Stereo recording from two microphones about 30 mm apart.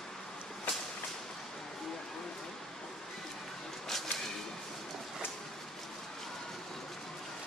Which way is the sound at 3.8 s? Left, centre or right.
Centre.